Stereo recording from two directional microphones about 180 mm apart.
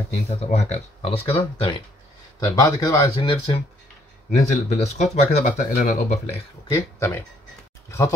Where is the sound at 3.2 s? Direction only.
35° left (ahead or behind).